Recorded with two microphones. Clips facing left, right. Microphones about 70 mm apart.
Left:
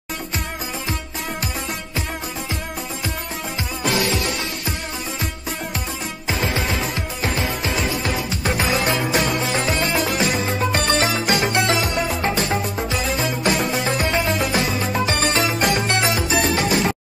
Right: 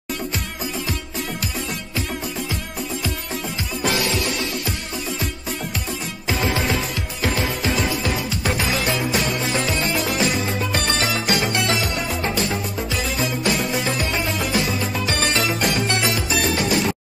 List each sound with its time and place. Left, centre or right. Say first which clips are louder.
3.9 s music: left 3 dB; left
7.9 s music: even; left
8.9 s music: left 2 dB; left
10.0 s music: even; left
10.3 s music: left 2 dB; left
12.2 s music: left 2 dB; left
12.7 s music: left 2 dB; left
15.6 s music: left 2 dB; left